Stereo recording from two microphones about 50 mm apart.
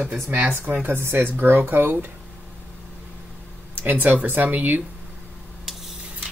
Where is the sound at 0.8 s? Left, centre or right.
Right.